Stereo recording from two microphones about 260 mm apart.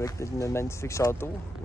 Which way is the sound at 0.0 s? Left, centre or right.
Centre.